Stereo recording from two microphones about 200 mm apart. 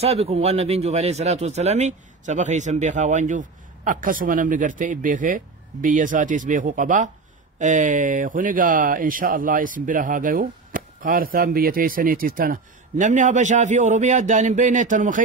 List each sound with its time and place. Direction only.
0.0 s speech: 30° right (ahead or behind)